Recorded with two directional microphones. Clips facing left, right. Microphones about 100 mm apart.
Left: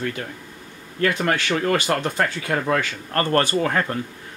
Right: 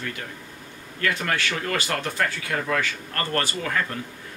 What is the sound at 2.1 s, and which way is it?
Speech, 35° left (ahead or behind).